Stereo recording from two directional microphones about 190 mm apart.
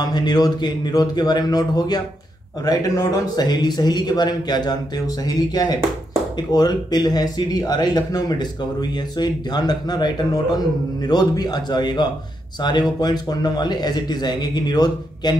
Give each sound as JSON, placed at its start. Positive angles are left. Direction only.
{"t": 0.1, "sound": "speech", "side_deg": 20}